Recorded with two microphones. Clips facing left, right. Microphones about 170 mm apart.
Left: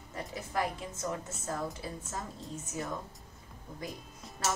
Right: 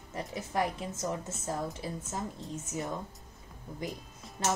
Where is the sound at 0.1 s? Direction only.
25° right (ahead or behind).